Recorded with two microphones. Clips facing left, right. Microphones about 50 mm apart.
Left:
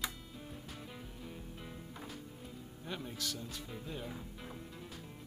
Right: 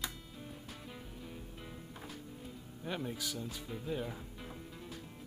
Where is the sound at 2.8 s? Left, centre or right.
Centre.